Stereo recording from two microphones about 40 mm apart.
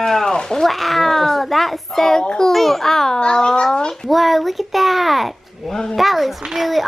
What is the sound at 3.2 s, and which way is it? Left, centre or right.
Speech, left.